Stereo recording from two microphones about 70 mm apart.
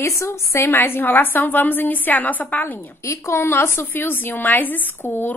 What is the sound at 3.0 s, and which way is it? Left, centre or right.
A woman's voice, left.